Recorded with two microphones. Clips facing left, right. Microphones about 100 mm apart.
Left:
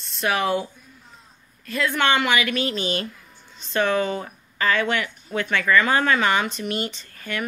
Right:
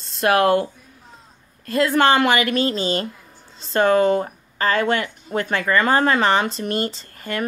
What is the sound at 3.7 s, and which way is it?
Speech, 45° right (ahead or behind).